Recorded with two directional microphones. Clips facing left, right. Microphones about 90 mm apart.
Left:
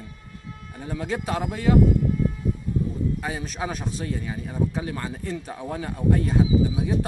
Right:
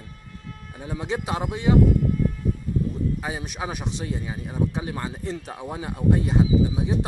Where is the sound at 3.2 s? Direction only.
15° right (ahead or behind).